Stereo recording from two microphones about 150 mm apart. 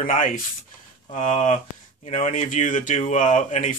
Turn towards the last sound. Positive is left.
turn(degrees=55)  # may be behind; listen again after turning